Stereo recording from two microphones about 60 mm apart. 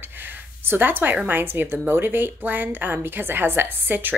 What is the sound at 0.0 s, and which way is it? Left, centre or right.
Speech, right.